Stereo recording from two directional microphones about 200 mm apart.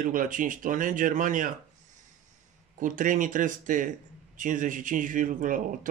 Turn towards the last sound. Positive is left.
turn(degrees=-40)  # may be behind; listen again after turning